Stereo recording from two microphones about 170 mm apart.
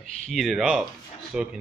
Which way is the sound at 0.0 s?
Centre (ahead or behind).